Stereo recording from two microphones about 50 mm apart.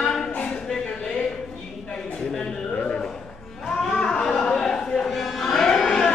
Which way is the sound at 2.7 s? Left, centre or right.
Left.